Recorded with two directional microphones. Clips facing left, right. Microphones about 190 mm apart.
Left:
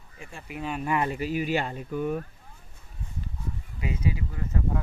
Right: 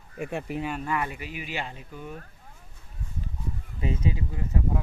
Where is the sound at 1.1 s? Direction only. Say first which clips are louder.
Left 8 dB; 40° left (ahead or behind); by 2.2 s 55° left (ahead or behind).